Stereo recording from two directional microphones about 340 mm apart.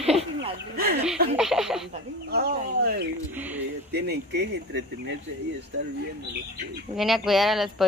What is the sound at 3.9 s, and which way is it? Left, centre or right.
Speech, right.